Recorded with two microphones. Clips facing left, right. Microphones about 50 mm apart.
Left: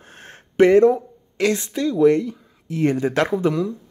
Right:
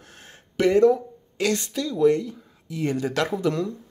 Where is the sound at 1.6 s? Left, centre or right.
Left.